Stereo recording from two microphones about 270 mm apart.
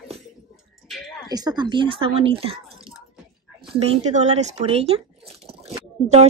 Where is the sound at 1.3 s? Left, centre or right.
Centre.